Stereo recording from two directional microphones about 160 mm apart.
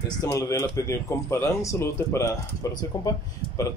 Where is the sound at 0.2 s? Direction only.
20° left (ahead or behind).